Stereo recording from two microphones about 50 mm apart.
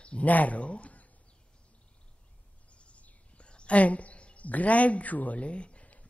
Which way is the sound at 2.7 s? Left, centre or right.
Left.